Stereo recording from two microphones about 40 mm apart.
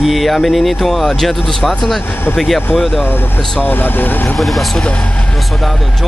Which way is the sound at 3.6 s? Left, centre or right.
Left.